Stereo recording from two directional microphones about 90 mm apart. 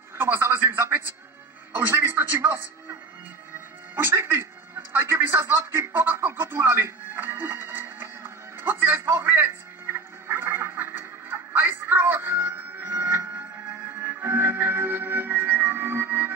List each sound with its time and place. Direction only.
0.2 s a man's voice: 25° right (ahead or behind)
3.9 s a sound: 25° right (ahead or behind)
14.0 s music: 25° right (ahead or behind)